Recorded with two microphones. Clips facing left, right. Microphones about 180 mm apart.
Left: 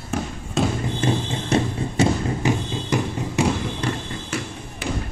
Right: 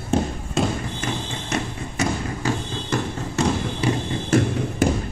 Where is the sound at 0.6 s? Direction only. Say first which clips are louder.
Even; centre (ahead or behind).